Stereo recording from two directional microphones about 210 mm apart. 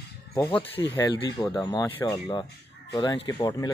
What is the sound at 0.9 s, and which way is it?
Speech, 20° left (ahead or behind).